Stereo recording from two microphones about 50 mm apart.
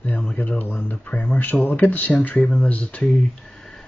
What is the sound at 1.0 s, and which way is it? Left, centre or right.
Speech, left.